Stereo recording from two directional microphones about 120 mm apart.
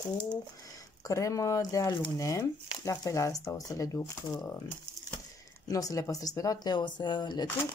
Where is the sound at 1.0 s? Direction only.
25° left (ahead or behind).